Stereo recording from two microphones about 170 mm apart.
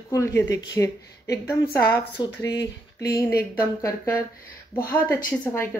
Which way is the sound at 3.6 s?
15° left (ahead or behind).